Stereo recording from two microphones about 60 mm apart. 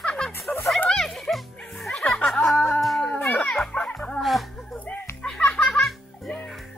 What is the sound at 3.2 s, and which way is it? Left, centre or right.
Music, left.